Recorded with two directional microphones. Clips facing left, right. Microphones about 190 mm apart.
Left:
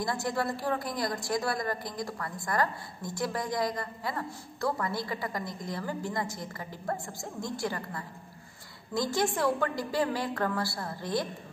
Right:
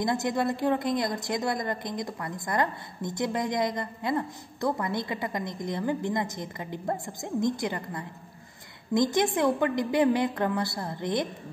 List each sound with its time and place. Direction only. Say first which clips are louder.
0.0 s a woman's voice: right 4 dB; 20° right (ahead or behind)